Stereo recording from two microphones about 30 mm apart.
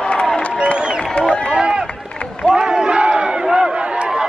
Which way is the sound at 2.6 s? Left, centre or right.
Right.